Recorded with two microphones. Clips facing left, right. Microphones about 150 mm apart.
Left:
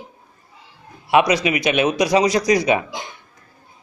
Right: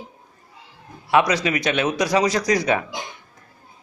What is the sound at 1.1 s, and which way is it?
Speech, 15° left (ahead or behind).